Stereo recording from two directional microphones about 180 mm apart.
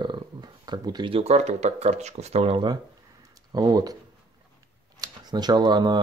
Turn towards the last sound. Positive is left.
turn(degrees=-25)  # may be behind; listen again after turning